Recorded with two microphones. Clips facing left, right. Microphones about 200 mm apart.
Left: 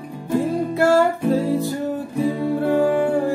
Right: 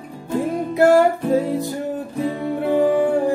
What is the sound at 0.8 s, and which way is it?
Music, 15° right (ahead or behind).